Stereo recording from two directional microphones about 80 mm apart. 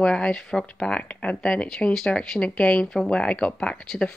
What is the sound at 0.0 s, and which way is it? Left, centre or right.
Speech, centre.